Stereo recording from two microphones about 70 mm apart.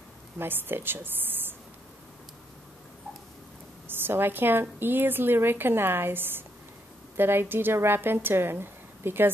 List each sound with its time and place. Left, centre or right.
0.4 s a woman's voice: right
3.8 s a woman's voice: right